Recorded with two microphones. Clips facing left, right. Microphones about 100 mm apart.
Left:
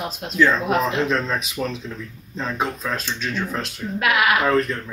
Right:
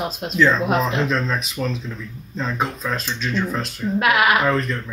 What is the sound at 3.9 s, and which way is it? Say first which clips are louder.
Speech: right 2 dB; 25° right (ahead or behind).